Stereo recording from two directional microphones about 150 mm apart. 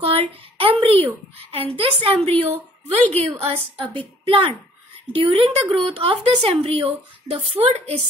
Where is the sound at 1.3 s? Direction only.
40° right (ahead or behind).